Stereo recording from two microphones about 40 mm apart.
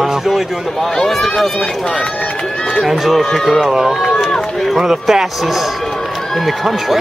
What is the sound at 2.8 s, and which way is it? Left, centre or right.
Speech, centre.